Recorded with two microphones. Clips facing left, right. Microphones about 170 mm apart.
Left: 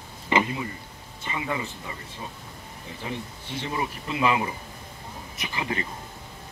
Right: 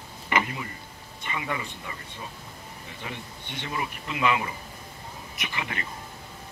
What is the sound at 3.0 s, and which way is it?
Speech, 30° left (ahead or behind).